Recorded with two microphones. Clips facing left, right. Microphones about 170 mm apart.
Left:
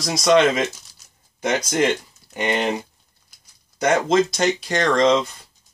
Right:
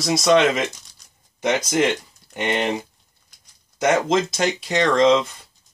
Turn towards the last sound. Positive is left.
turn(degrees=0)  # may be behind; listen again after turning